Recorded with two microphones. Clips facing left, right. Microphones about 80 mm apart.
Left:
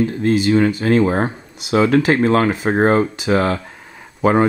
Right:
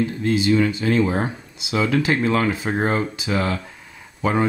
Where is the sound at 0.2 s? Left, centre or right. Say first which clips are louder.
Left 3 dB; left.